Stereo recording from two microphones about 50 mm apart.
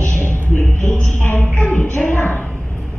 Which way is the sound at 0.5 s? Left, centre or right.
Left.